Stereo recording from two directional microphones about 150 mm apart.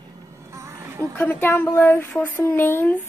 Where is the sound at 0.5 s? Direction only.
20° right (ahead or behind).